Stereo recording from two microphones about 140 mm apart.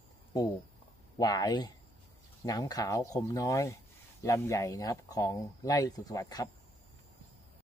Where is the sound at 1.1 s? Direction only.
30° left (ahead or behind).